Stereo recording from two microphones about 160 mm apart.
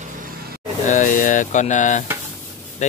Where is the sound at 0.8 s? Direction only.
55° left (ahead or behind).